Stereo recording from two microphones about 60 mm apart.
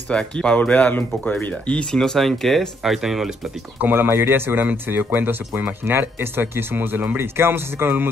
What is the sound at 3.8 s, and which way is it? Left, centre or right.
Speech, right.